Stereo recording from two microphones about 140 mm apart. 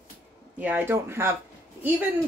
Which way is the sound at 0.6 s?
15° right (ahead or behind).